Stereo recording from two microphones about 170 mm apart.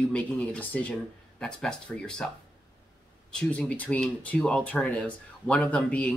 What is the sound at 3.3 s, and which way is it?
Speech, 5° left (ahead or behind).